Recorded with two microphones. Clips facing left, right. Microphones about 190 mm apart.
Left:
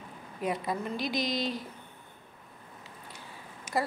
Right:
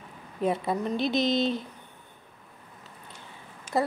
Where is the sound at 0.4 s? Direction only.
25° right (ahead or behind).